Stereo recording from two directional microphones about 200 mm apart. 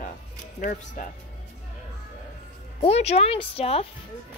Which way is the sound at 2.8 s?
30° left (ahead or behind).